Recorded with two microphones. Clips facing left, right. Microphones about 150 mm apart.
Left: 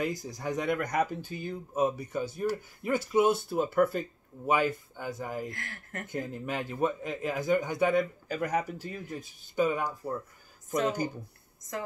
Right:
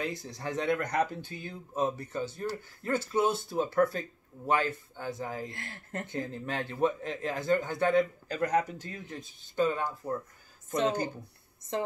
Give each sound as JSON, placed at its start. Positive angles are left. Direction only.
{"t": 0.4, "sound": "speech", "side_deg": 10}
{"t": 5.5, "sound": "speech", "side_deg": -25}
{"t": 6.0, "sound": "speech", "side_deg": 10}